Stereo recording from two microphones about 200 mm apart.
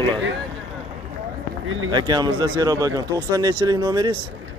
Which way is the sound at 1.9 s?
20° right (ahead or behind).